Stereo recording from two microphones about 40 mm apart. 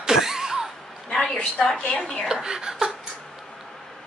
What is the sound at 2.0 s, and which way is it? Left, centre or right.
Speech, centre.